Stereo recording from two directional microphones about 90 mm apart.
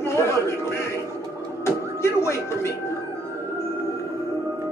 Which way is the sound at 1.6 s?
30° left (ahead or behind).